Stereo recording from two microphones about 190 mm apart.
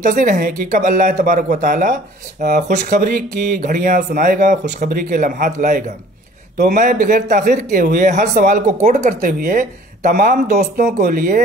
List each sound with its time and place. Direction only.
0.0 s speech: 45° right (ahead or behind)